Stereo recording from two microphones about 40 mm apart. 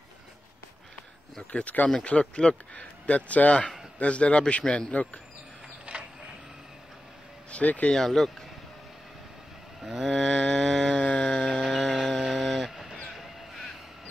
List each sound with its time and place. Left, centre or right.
1.5 s speech: left
5.9 s a sound: right
7.5 s speech: left
7.9 s speech: centre
9.8 s a sound: centre
10.0 s speech: centre
10.5 s a sound: centre
11.0 s music: left
12.6 s vehicle: centre
13.1 s crow: centre